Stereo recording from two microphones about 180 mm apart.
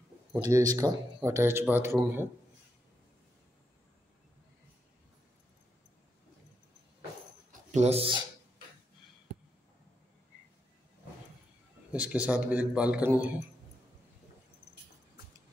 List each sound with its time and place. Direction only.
0.3 s speech: 20° right (ahead or behind)
7.7 s speech: 35° right (ahead or behind)
11.9 s speech: 5° right (ahead or behind)